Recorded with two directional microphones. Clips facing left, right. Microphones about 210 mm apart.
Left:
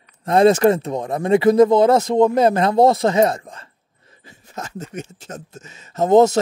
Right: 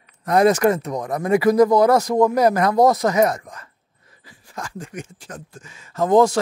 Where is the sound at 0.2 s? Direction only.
25° left (ahead or behind).